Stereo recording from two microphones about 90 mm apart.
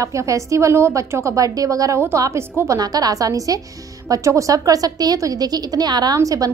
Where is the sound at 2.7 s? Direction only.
45° right (ahead or behind).